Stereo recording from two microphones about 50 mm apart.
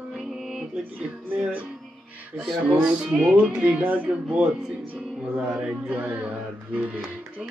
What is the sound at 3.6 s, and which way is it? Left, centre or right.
Music, right.